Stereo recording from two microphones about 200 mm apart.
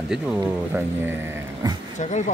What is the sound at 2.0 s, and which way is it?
Speech, 35° left (ahead or behind).